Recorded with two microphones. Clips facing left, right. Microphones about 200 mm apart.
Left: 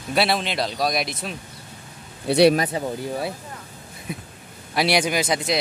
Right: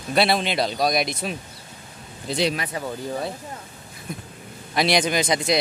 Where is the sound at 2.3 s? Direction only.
65° left (ahead or behind).